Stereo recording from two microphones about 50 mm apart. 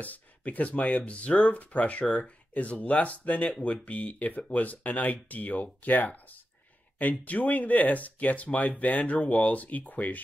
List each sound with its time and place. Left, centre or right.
0.0 s speech: left